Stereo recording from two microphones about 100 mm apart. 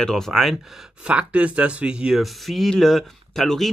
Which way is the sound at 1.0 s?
10° right (ahead or behind).